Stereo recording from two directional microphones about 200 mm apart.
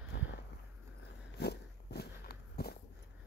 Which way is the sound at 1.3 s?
55° left (ahead or behind).